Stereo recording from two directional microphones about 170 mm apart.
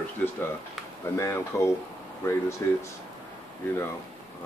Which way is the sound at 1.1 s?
15° left (ahead or behind).